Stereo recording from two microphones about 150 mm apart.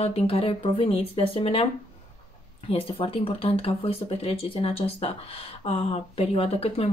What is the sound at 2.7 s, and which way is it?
Speech, 40° left (ahead or behind).